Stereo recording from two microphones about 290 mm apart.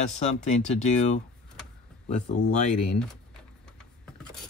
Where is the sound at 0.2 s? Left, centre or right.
Left.